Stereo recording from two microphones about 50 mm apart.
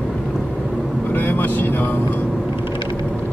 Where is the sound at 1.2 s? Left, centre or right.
Left.